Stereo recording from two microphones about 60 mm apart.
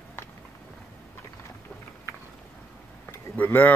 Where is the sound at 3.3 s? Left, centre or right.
Left.